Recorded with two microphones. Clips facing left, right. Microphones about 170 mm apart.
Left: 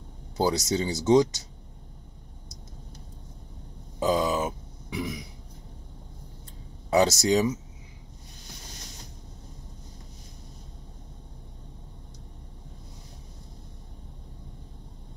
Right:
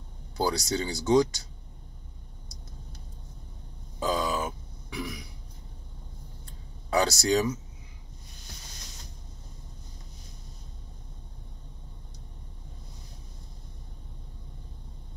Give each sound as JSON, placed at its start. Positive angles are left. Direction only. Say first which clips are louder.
{"t": 0.4, "sound": "speech", "louder": "left 3 dB", "side_deg": 20}
{"t": 4.0, "sound": "burping", "louder": "left 4 dB", "side_deg": 20}
{"t": 6.9, "sound": "speech", "louder": "left 3 dB", "side_deg": 20}